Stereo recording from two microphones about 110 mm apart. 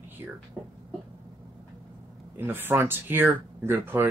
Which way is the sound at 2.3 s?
20° right (ahead or behind).